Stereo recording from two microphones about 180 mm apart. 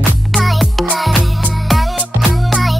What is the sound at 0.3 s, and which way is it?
Music, centre (ahead or behind).